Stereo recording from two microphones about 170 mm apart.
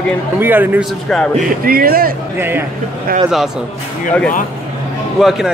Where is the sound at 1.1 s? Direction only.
5° left (ahead or behind).